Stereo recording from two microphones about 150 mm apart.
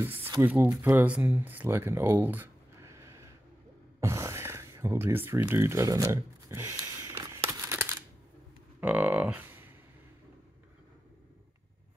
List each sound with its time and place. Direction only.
0.0 s speech: 15° right (ahead or behind)
4.0 s a sound: 20° right (ahead or behind)
8.8 s speech: 10° right (ahead or behind)